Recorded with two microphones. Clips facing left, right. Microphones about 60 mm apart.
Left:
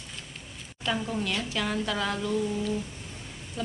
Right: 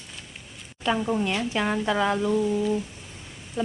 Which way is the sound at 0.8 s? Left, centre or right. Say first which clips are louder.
Right 5 dB; centre.